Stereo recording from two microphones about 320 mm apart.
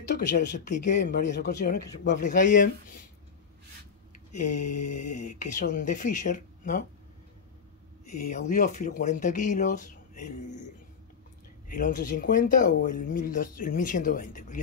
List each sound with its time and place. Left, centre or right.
0.1 s speech: left
4.3 s speech: left
8.3 s speech: left
11.7 s speech: left